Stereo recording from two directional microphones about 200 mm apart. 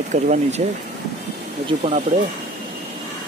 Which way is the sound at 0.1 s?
35° right (ahead or behind).